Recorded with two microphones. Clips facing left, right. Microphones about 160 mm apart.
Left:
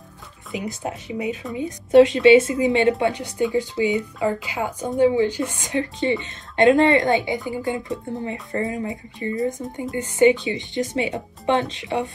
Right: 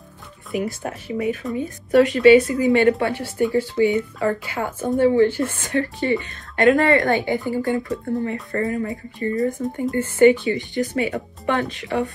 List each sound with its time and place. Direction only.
0.5 s speech: 20° left (ahead or behind)